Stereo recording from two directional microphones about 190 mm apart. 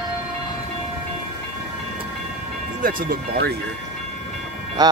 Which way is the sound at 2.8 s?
50° right (ahead or behind).